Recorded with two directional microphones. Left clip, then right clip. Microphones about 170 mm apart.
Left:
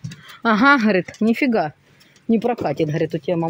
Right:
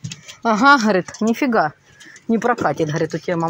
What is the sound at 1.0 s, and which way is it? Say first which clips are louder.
A woman's voice: even; 20° left (ahead or behind).